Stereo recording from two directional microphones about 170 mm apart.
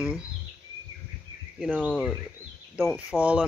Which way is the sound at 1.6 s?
10° right (ahead or behind).